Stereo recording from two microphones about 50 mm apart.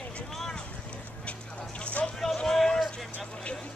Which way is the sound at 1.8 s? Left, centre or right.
Left.